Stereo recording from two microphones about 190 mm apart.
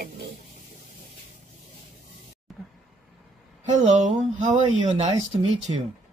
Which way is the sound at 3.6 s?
40° right (ahead or behind).